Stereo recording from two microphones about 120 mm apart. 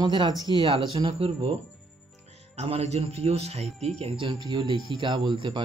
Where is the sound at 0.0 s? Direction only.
40° right (ahead or behind).